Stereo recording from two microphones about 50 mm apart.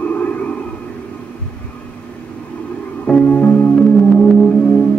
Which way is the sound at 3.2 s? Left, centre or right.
Left.